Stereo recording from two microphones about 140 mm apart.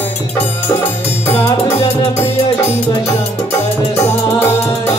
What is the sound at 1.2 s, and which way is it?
Music, 20° left (ahead or behind).